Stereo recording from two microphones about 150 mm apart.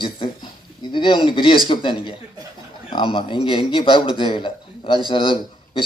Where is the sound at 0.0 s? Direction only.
30° left (ahead or behind).